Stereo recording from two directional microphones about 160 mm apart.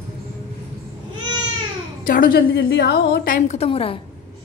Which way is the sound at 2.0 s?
65° left (ahead or behind).